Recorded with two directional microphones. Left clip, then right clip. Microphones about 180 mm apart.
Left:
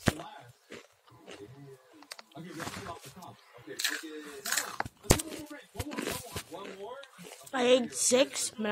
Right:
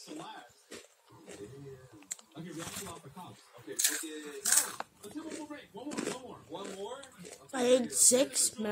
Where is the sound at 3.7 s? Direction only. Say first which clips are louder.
Left 1 dB; 15° right (ahead or behind).